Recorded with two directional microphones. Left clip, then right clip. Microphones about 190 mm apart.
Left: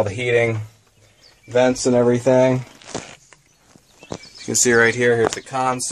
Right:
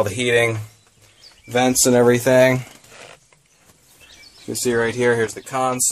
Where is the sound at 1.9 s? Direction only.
60° right (ahead or behind).